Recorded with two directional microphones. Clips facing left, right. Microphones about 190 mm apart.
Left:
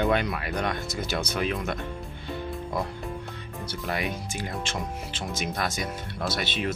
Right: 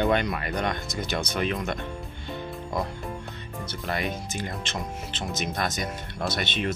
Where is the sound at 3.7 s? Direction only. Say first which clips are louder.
Even; 10° left (ahead or behind).